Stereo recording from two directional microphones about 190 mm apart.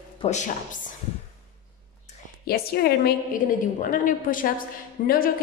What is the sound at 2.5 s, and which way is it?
A woman's voice, 55° left (ahead or behind).